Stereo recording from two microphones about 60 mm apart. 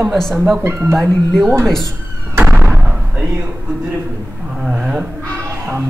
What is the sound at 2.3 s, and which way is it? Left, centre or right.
Music, right.